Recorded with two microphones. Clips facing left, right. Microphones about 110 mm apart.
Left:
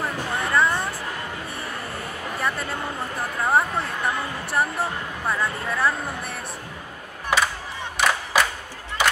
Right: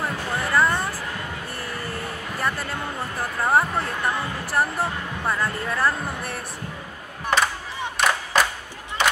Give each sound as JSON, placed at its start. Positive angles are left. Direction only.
{"t": 0.0, "sound": "music", "side_deg": 0}
{"t": 3.2, "sound": "speech", "side_deg": 0}
{"t": 7.3, "sound": "a sound", "side_deg": 5}
{"t": 8.0, "sound": "crowd", "side_deg": 0}